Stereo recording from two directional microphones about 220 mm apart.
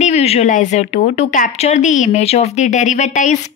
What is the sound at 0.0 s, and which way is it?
A woman's voice, 30° left (ahead or behind).